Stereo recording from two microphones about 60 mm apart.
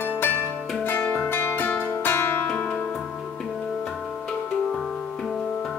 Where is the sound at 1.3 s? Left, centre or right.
Left.